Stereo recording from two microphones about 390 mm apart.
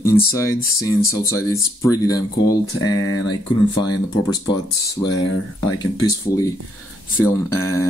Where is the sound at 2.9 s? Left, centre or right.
Left.